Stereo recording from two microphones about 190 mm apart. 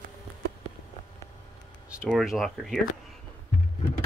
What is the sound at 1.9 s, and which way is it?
Speech, 5° right (ahead or behind).